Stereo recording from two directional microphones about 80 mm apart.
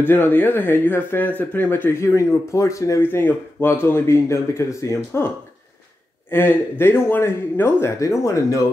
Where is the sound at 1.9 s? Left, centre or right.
Left.